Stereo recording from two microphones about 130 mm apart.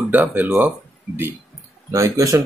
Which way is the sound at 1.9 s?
25° right (ahead or behind).